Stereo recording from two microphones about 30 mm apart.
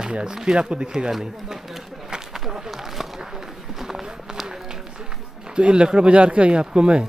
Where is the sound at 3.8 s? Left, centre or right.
Centre.